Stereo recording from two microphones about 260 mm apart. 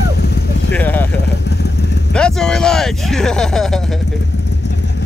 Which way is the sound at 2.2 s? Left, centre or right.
Centre.